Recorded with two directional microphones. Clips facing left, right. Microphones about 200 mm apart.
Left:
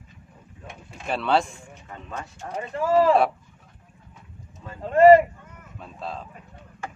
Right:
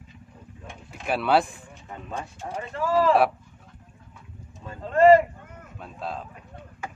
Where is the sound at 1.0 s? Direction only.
10° right (ahead or behind).